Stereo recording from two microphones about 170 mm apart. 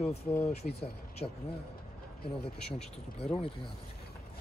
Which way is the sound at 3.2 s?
35° left (ahead or behind).